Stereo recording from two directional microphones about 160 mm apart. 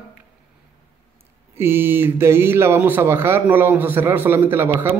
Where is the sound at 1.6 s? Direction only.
15° right (ahead or behind).